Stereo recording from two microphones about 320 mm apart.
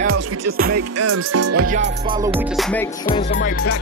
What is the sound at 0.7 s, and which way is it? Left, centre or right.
Music, right.